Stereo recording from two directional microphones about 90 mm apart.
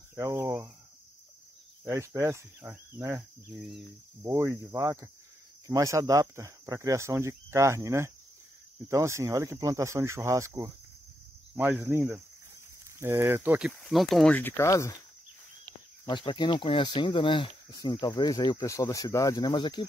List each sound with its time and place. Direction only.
0.2 s cricket: 30° right (ahead or behind)
1.9 s speech: 30° right (ahead or behind)
2.6 s cricket: 25° right (ahead or behind)
4.2 s cricket: 30° right (ahead or behind)
5.7 s speech: 35° right (ahead or behind)
11.5 s speech: 15° right (ahead or behind)
13.0 s cricket: 25° right (ahead or behind)
13.6 s speech: 5° right (ahead or behind)
14.3 s speech: 25° left (ahead or behind)
14.7 s speech: 35° left (ahead or behind)
16.1 s speech: 60° left (ahead or behind)
17.7 s speech: 50° left (ahead or behind)
18.7 s speech: 35° left (ahead or behind)
19.5 s speech: 55° left (ahead or behind)